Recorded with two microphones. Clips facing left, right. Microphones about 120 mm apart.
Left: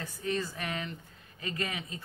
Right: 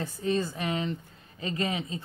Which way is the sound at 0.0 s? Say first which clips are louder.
Right 5 dB; 25° right (ahead or behind).